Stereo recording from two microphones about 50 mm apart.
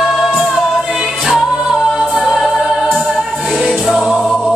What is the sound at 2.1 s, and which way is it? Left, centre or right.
Music, centre.